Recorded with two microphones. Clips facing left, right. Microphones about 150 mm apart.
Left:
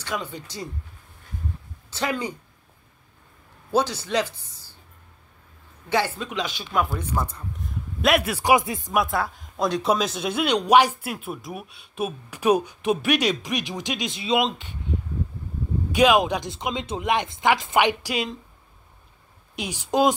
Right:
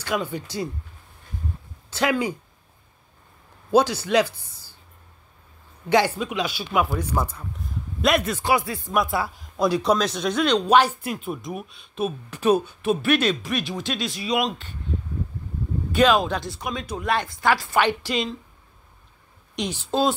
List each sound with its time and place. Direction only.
0.0 s speech: 10° right (ahead or behind)
1.9 s speech: 10° right (ahead or behind)
3.7 s speech: 10° right (ahead or behind)
5.9 s speech: 15° right (ahead or behind); by 8.9 s 20° left (ahead or behind)
8.9 s speech: centre (ahead or behind); by 14.8 s 20° left (ahead or behind)
15.9 s speech: 15° left (ahead or behind)
19.5 s speech: 10° left (ahead or behind)